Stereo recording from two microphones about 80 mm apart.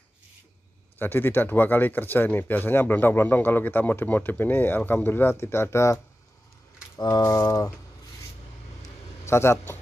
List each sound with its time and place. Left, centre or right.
0.9 s speech: left
7.0 s a sound: left
9.2 s speech: left